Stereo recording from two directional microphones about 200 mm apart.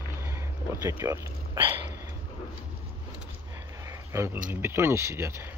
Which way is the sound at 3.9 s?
15° right (ahead or behind).